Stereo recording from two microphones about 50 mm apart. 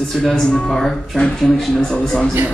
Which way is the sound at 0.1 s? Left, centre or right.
Centre.